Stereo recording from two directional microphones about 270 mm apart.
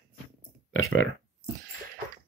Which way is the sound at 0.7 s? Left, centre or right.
Left.